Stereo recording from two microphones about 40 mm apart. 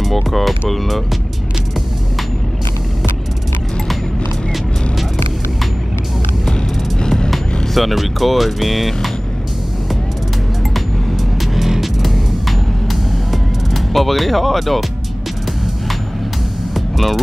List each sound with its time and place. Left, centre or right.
0.0 s speech: centre
6.5 s music: centre
7.7 s speech: centre
11.5 s music: centre
16.7 s music: centre